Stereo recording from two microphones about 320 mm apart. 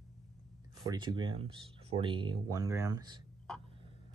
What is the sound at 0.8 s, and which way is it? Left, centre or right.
Speech, centre.